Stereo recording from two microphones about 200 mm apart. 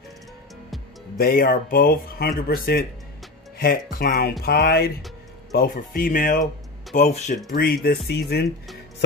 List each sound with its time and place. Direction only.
1.1 s speech: 45° left (ahead or behind)
7.5 s speech: 50° left (ahead or behind)